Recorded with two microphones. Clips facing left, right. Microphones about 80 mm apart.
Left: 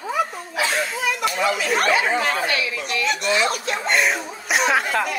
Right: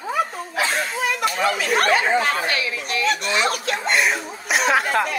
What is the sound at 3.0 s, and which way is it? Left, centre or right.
Speech, right.